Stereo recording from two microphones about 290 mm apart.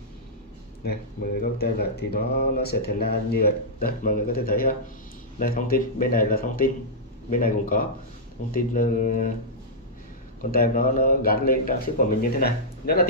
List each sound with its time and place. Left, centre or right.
0.8 s speech: left
10.4 s speech: left